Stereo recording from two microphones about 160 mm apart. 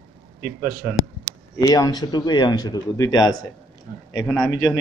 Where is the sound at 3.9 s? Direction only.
60° right (ahead or behind).